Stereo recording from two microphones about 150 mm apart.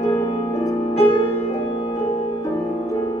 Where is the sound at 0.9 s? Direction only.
40° left (ahead or behind).